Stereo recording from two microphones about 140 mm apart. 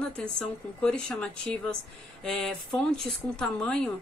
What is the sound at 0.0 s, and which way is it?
Speech, 5° left (ahead or behind).